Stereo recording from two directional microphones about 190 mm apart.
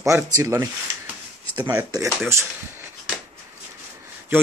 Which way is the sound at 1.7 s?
10° right (ahead or behind).